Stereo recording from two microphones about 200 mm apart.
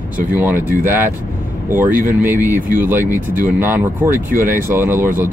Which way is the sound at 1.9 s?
40° right (ahead or behind).